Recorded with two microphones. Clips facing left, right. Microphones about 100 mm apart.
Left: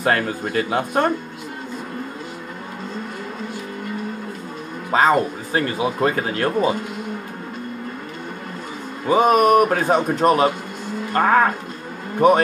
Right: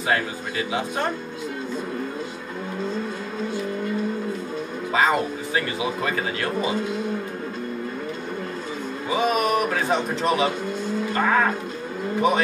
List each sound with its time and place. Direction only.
0.0 s speech: 55° left (ahead or behind)
4.9 s speech: 40° left (ahead or behind)
9.1 s speech: 50° left (ahead or behind)